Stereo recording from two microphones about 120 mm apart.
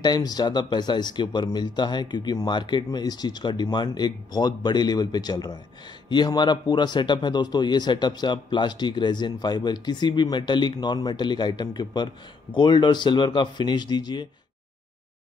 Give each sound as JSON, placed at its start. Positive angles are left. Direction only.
{"t": 0.0, "sound": "a man's voice", "side_deg": 35}